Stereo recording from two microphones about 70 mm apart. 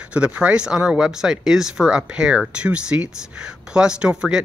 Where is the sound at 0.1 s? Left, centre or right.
Centre.